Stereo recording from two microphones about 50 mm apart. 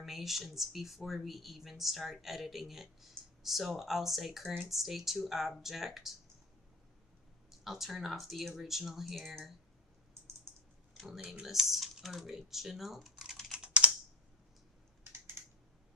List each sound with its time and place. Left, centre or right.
0.0 s speech: centre
7.6 s speech: centre
11.4 s speech: centre
13.6 s computer keyboard: right
15.4 s typing: right